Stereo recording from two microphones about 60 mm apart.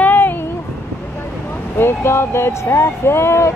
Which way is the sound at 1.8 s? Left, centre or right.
Left.